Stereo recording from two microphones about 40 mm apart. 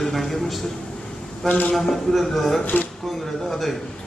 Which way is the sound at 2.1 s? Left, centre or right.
Centre.